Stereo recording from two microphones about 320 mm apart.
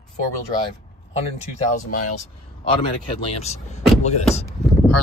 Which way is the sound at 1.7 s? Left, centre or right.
Left.